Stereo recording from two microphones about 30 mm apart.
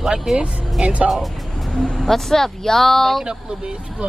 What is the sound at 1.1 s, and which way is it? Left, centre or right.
Music, centre.